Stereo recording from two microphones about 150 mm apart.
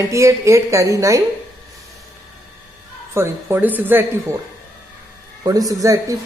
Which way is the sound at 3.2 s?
15° right (ahead or behind).